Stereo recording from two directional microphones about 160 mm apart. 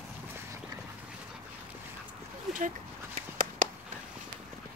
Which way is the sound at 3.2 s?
60° right (ahead or behind).